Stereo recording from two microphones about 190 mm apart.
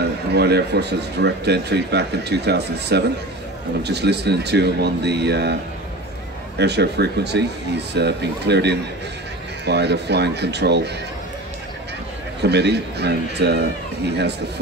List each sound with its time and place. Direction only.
0.3 s speech: 60° right (ahead or behind)
6.6 s speech: 60° right (ahead or behind)
12.4 s speech: 65° right (ahead or behind)